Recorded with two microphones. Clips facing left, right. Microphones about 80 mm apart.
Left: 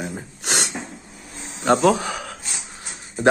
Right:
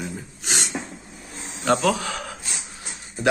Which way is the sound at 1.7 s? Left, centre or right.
Left.